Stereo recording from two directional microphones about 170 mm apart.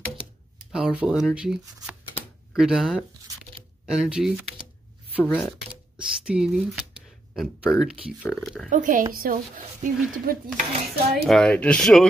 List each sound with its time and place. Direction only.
0.7 s speech: 5° right (ahead or behind)
5.2 s speech: 10° left (ahead or behind)
5.9 s speech: 5° right (ahead or behind)
8.6 s speech: 50° right (ahead or behind)
11.2 s speech: 5° left (ahead or behind)